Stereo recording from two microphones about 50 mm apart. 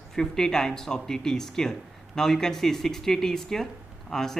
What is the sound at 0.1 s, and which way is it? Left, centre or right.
Speech, centre.